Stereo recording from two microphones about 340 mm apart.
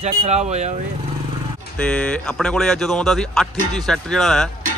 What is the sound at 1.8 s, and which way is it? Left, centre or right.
Speech, centre.